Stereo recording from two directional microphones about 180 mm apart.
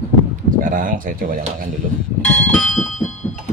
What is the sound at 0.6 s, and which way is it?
Speech, 50° right (ahead or behind).